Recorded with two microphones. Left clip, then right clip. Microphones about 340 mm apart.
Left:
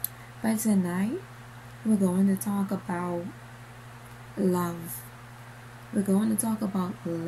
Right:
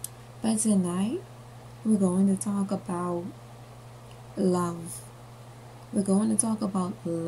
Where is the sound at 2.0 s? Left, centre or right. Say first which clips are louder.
Right 1 dB; centre.